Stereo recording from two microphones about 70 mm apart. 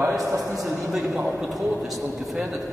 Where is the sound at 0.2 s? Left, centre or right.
Right.